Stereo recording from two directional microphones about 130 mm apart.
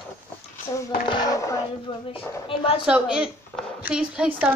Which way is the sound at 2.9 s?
5° right (ahead or behind).